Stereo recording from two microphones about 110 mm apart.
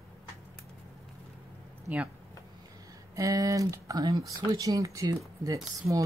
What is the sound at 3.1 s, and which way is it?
Speech, 30° right (ahead or behind).